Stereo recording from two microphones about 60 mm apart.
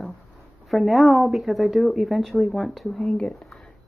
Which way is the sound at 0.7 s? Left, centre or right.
Centre.